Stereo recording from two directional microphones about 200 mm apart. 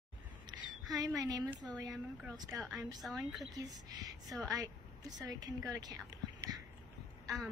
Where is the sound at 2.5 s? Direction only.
Centre (ahead or behind).